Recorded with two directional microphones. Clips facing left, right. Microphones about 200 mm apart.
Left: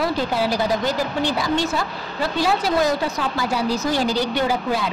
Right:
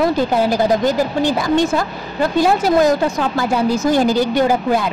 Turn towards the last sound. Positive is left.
turn(degrees=-50)  # may be behind; listen again after turning